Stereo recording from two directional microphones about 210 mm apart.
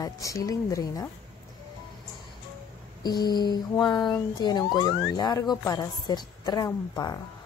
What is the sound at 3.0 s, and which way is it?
A woman's voice, 20° left (ahead or behind).